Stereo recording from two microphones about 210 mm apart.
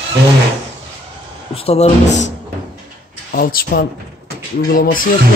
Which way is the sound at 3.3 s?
45° left (ahead or behind).